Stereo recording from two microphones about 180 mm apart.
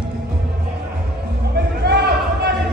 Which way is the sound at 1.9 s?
65° right (ahead or behind).